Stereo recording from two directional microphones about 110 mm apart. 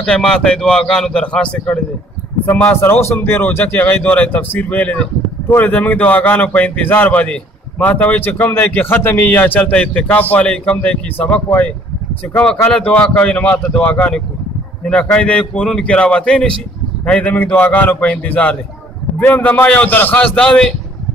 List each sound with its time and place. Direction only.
0.0 s speech: 10° left (ahead or behind)
2.4 s speech: 20° left (ahead or behind)
12.7 s speech: 10° left (ahead or behind)